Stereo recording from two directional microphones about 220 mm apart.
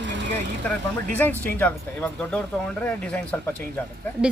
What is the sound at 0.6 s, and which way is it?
Speech, 5° left (ahead or behind).